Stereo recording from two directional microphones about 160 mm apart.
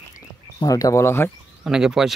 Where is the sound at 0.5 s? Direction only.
20° left (ahead or behind).